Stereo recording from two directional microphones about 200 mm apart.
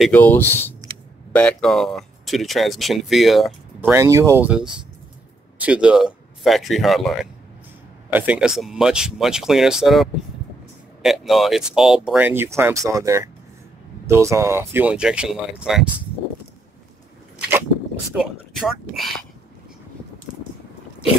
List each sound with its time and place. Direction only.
0.0 s speech: 10° left (ahead or behind)
3.9 s speech: 15° right (ahead or behind)
18.1 s speech: 5° right (ahead or behind)